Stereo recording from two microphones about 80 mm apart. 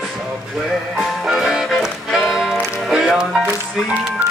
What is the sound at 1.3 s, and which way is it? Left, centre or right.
Music, centre.